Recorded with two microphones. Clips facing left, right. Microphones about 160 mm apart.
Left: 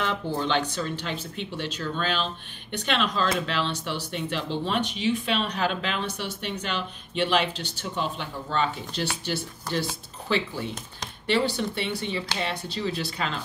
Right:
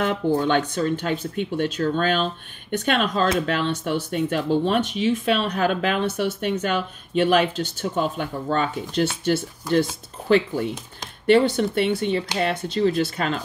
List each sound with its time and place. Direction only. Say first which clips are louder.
0.0 s speech: right 7 dB; 50° right (ahead or behind)
10.2 s speech: right 8 dB; 50° right (ahead or behind)